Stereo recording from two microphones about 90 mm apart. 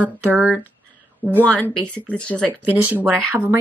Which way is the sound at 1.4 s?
15° left (ahead or behind).